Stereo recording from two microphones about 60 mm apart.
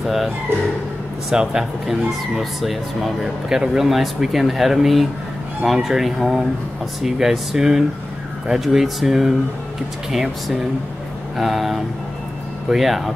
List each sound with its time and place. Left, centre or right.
0.0 s speech: centre
1.3 s speech: centre
11.3 s speech: centre